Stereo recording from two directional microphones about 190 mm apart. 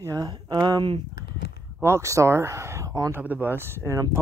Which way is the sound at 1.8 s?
15° right (ahead or behind).